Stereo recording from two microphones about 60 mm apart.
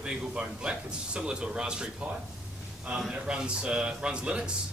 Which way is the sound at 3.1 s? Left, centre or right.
Centre.